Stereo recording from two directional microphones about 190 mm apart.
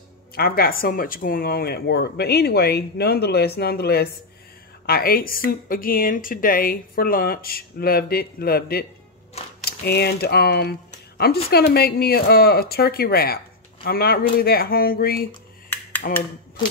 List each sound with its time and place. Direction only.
0.3 s a woman's voice: 50° left (ahead or behind)